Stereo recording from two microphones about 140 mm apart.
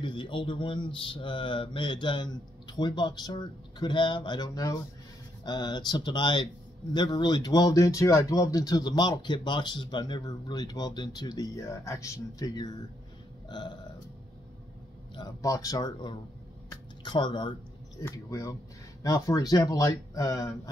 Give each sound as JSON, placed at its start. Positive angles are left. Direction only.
{"t": 0.0, "sound": "speech", "side_deg": 35}
{"t": 13.5, "sound": "burping", "side_deg": 30}
{"t": 15.1, "sound": "speech", "side_deg": 25}